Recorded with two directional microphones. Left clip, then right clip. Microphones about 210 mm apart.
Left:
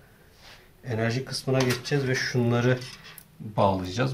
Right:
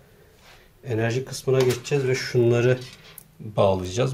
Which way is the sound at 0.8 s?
30° right (ahead or behind).